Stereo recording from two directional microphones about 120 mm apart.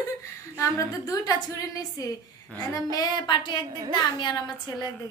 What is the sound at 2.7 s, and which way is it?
Female singing, 30° left (ahead or behind).